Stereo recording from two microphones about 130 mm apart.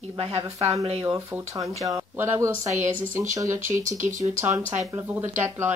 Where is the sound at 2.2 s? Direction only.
20° right (ahead or behind).